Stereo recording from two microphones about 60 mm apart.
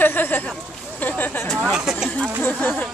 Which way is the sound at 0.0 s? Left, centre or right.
Left.